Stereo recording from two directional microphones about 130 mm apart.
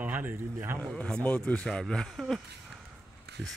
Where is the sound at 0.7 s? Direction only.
10° left (ahead or behind).